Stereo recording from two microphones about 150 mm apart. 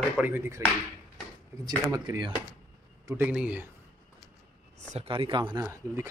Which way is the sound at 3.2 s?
10° right (ahead or behind).